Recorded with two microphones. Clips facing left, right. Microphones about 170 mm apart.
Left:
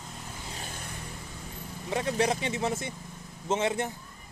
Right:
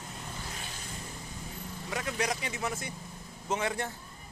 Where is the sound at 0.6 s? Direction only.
55° left (ahead or behind).